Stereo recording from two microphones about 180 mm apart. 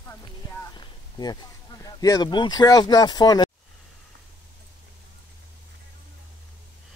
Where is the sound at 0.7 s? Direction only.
25° left (ahead or behind).